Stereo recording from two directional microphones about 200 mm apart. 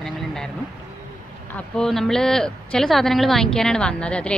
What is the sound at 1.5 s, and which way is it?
Speech, 5° left (ahead or behind).